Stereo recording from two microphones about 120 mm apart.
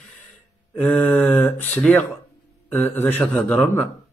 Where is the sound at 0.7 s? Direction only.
10° left (ahead or behind).